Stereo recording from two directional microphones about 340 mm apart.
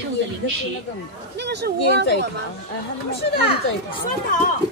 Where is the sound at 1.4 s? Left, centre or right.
Right.